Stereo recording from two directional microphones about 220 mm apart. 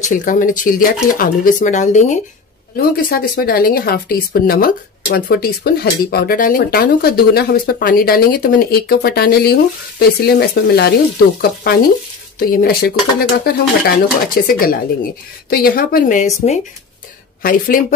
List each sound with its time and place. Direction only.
0.0 s speech: 35° left (ahead or behind)
17.4 s speech: 40° left (ahead or behind)